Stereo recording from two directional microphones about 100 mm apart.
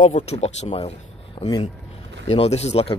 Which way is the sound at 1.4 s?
50° left (ahead or behind).